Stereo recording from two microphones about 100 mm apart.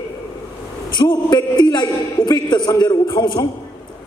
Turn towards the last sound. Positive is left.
turn(degrees=45)  # may be behind; listen again after turning